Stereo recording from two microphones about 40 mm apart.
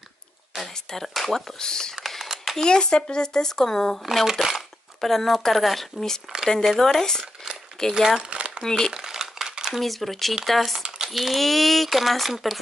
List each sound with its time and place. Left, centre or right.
0.6 s speech: centre
1.6 s speech: centre
2.0 s a sound: centre
2.5 s speech: centre
4.0 s speech: centre
5.0 s speech: centre
5.9 s speech: centre
6.6 s speech: centre
7.9 s speech: centre
8.3 s a sound: right
8.6 s speech: centre
8.9 s a sound: centre
9.8 s speech: centre